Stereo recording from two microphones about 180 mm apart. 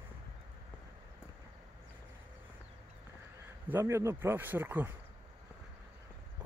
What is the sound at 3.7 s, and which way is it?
A man's voice, 15° right (ahead or behind).